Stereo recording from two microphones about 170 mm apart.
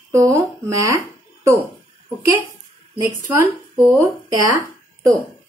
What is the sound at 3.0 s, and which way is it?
Speech, 15° right (ahead or behind).